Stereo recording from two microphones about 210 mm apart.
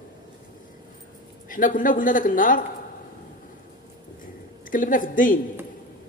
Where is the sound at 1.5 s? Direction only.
40° left (ahead or behind).